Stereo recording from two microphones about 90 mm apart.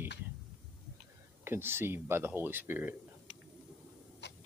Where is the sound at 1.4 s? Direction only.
25° right (ahead or behind).